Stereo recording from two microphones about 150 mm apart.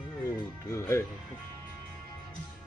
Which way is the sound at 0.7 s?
20° left (ahead or behind).